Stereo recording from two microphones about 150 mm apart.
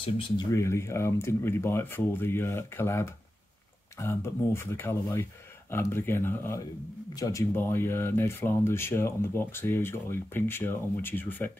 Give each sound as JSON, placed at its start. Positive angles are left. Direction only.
{"t": 0.5, "sound": "speech", "side_deg": 20}